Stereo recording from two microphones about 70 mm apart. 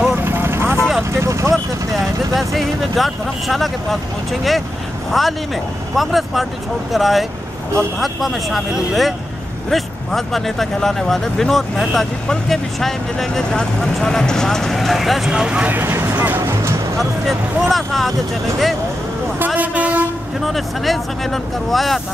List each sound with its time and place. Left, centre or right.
0.0 s vehicle: right
2.3 s speech: centre
15.8 s vehicle: right
16.3 s speech: right
17.0 s speech: centre
19.7 s train: right
20.3 s speech: centre